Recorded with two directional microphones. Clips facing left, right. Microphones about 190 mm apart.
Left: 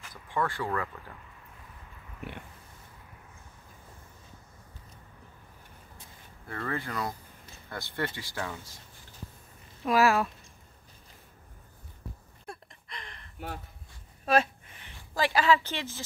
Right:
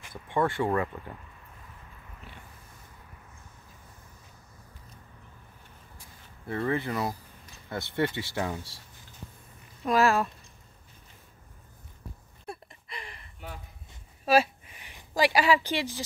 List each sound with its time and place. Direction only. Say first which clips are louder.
0.0 s speech: right 4 dB; 25° right (ahead or behind)
6.4 s speech: right 6 dB; 20° right (ahead or behind)
9.8 s speech: even; 5° left (ahead or behind)
12.4 s a sound: right 3 dB; 5° right (ahead or behind)